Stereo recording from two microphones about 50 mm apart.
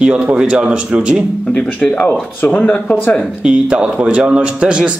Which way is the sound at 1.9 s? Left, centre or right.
Left.